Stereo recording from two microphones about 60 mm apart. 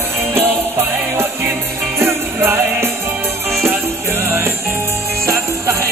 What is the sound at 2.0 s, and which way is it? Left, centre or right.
Music, right.